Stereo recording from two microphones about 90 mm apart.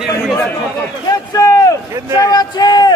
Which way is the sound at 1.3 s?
40° left (ahead or behind).